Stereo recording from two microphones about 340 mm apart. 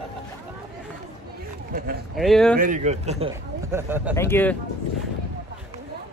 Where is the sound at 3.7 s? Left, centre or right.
Centre.